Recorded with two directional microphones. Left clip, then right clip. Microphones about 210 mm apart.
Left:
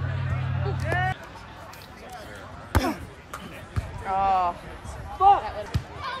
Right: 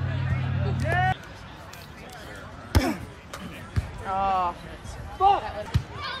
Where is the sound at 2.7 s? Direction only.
20° left (ahead or behind).